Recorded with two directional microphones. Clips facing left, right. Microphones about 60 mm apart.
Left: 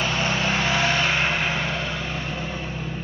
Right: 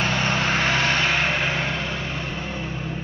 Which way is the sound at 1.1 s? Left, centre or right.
Left.